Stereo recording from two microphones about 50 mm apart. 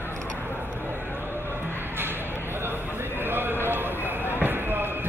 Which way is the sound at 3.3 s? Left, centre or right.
Right.